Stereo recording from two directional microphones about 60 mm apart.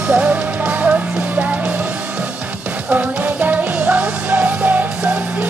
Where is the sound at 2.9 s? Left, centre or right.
Right.